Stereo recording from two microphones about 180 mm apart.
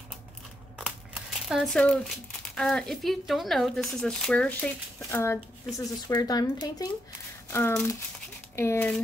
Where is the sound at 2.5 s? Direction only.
Centre (ahead or behind).